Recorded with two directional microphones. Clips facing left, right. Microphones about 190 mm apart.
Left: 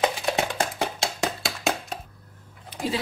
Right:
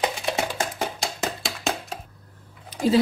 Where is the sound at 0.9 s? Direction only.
Centre (ahead or behind).